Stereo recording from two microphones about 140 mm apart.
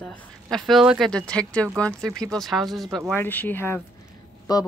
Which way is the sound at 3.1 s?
15° left (ahead or behind).